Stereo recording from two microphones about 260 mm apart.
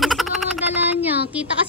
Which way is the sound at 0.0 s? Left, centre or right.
Centre.